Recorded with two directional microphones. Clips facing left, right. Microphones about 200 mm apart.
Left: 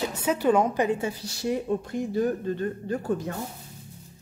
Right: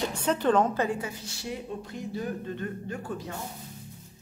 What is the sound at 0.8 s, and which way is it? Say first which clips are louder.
Speech: left 5 dB; 25° left (ahead or behind).